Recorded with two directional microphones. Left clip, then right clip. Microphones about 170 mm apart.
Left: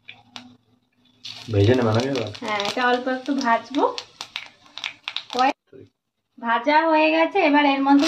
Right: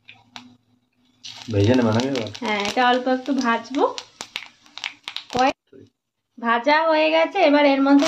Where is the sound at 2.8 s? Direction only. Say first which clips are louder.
Right 4 dB; 50° right (ahead or behind).